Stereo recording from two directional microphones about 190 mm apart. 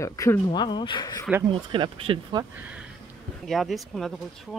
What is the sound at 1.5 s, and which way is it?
Speech, 25° right (ahead or behind).